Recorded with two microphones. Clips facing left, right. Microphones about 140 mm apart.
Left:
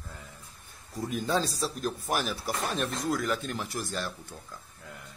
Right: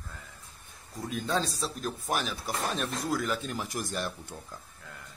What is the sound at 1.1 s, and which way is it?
Speech, 5° left (ahead or behind).